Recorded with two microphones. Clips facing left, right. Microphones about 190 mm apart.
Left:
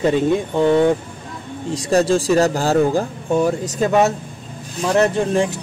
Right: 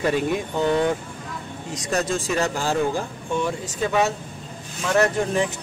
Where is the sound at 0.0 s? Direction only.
25° left (ahead or behind); by 4.1 s 45° left (ahead or behind).